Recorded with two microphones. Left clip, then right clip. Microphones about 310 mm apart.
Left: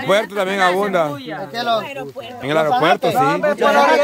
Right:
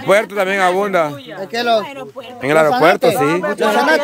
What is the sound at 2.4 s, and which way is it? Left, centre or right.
Speech, centre.